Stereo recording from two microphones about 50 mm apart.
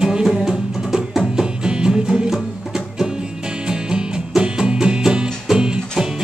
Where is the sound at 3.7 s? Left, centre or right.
Centre.